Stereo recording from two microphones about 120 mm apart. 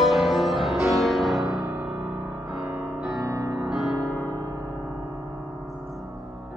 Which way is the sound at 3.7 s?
Centre (ahead or behind).